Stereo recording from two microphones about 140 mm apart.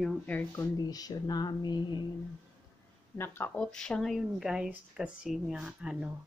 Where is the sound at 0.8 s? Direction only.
25° left (ahead or behind).